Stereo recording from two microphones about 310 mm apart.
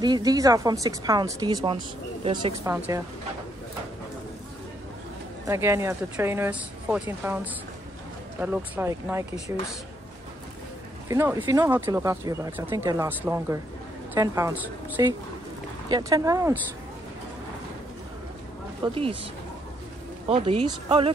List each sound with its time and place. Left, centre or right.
0.0 s speech: centre
5.5 s speech: centre
8.4 s speech: centre
11.1 s speech: centre
18.8 s speech: centre
20.2 s speech: centre